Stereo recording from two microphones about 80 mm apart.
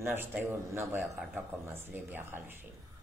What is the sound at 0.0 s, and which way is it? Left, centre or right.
Speech, right.